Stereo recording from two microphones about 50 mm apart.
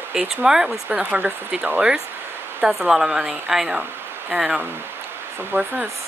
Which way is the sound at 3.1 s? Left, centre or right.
Right.